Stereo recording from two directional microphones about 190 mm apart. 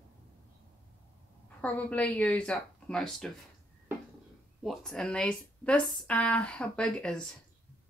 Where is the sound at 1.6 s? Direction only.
5° left (ahead or behind).